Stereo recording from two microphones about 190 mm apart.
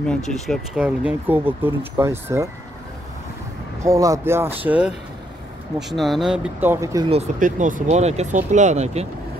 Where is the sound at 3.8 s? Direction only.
15° right (ahead or behind).